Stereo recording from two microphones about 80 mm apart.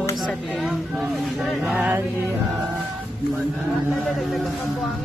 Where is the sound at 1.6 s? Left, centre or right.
Centre.